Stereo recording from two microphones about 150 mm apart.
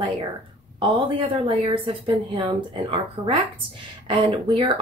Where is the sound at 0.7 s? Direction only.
35° right (ahead or behind).